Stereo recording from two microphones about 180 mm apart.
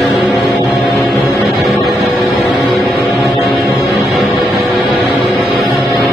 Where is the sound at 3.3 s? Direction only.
20° left (ahead or behind).